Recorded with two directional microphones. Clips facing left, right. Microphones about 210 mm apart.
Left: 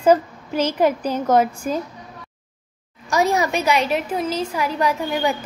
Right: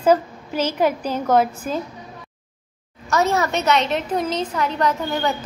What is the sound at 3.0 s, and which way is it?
A woman's voice, 15° left (ahead or behind).